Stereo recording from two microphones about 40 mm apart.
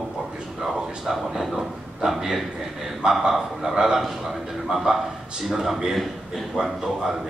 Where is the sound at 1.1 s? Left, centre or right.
Centre.